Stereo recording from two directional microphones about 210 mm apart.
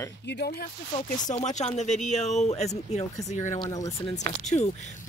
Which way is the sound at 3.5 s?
20° left (ahead or behind).